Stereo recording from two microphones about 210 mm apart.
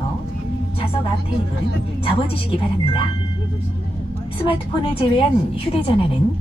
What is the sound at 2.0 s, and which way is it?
Speech, 25° left (ahead or behind).